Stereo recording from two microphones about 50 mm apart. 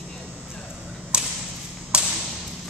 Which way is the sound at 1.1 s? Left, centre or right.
Right.